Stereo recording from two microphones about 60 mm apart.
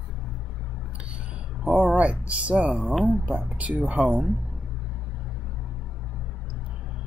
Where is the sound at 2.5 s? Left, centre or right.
Centre.